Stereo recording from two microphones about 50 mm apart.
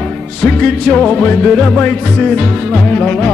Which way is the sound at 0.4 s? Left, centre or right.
Left.